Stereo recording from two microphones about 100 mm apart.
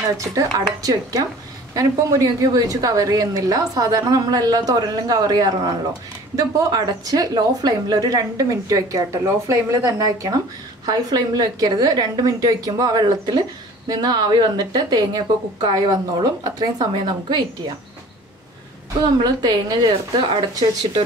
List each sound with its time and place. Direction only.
0.2 s a woman's voice: 35° right (ahead or behind)
1.7 s a woman's voice: 35° right (ahead or behind)
18.9 s a woman's voice: 45° right (ahead or behind)